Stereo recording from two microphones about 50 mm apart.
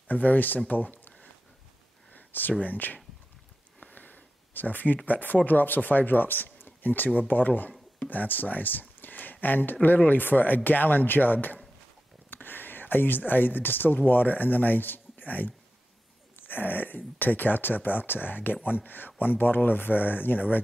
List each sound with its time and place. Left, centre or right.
0.1 s speech: left
2.1 s a sound: left
2.6 s speech: left
18.6 s speech: right
18.9 s speech: left